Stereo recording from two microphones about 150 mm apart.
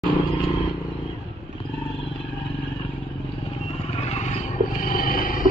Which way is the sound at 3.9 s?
45° left (ahead or behind).